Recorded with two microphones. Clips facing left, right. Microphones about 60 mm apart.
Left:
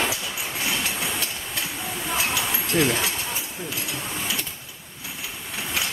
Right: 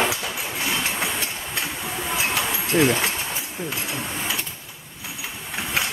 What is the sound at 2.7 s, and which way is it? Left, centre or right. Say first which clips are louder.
Speech: right 3 dB; right.